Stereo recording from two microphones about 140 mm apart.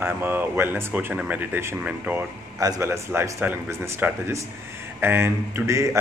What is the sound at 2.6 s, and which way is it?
Speech, 20° right (ahead or behind).